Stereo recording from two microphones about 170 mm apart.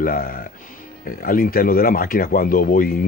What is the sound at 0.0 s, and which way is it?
Speech, 60° left (ahead or behind).